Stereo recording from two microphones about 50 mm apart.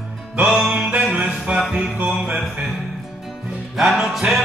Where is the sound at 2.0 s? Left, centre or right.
Centre.